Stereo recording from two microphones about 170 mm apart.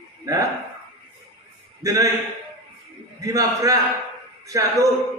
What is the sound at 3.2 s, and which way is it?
A man's voice, 20° right (ahead or behind).